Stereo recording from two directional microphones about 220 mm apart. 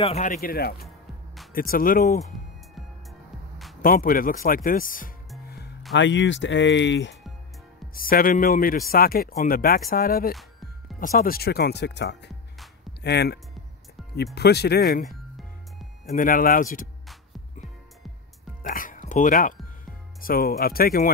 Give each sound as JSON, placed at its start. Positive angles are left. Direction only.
{"t": 0.0, "sound": "speech", "side_deg": 30}
{"t": 0.4, "sound": "speech", "side_deg": 45}
{"t": 0.8, "sound": "music", "side_deg": 0}
{"t": 1.5, "sound": "a man's voice", "side_deg": 40}
{"t": 3.8, "sound": "a man's voice", "side_deg": 40}
{"t": 5.9, "sound": "speech", "side_deg": 55}
{"t": 7.9, "sound": "a man's voice", "side_deg": 40}
{"t": 16.1, "sound": "a man's voice", "side_deg": 40}
{"t": 18.6, "sound": "music", "side_deg": 40}